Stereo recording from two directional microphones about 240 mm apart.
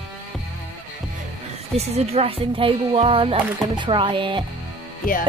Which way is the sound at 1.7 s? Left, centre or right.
Right.